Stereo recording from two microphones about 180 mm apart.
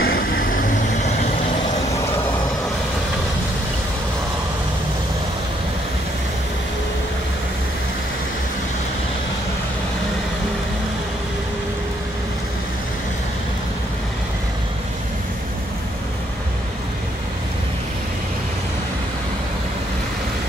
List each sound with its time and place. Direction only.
0.0 s vehicle: 55° left (ahead or behind)